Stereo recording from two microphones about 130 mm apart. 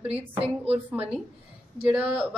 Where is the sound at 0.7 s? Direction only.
10° right (ahead or behind).